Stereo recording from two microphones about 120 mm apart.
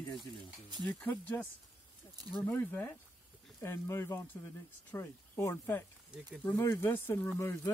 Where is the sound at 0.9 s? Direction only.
15° left (ahead or behind).